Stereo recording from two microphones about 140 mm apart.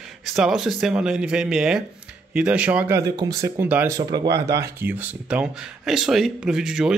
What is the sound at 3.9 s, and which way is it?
Speech, 30° right (ahead or behind).